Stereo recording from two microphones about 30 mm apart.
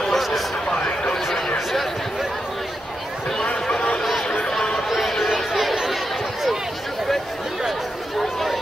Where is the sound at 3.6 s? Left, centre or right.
Left.